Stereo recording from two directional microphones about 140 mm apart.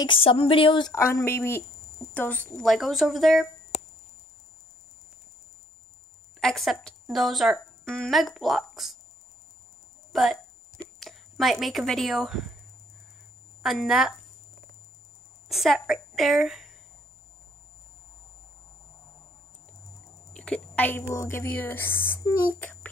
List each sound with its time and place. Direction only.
0.0 s speech: 40° left (ahead or behind)
0.9 s a woman's voice: 20° left (ahead or behind); by 3.4 s centre (ahead or behind)
6.4 s a woman's voice: centre (ahead or behind)
10.1 s a woman's voice: centre (ahead or behind)
13.6 s a woman's voice: centre (ahead or behind)
15.4 s a woman's voice: centre (ahead or behind)
20.3 s a woman's voice: 5° left (ahead or behind)